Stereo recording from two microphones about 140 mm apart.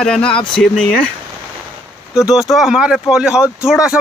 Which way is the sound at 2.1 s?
Centre (ahead or behind).